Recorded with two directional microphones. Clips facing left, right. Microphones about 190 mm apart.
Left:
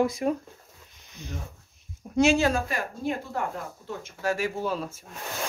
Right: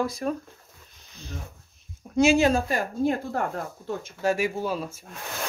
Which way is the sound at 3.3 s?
50° right (ahead or behind).